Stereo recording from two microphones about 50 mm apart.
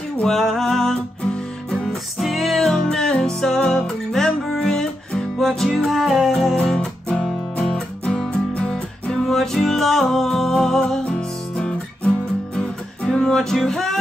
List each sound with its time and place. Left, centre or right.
0.3 s music: centre
1.2 s music: centre
1.9 s music: centre
6.6 s music: centre